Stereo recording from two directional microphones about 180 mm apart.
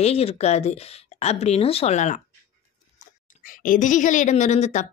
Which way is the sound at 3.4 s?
50° left (ahead or behind).